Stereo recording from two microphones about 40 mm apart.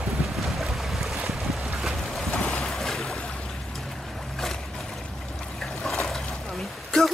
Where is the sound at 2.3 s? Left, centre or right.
Left.